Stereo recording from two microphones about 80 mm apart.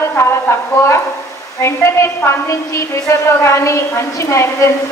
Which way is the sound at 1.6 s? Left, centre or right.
Left.